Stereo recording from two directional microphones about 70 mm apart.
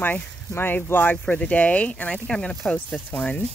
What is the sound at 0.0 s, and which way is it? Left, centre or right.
Speech, left.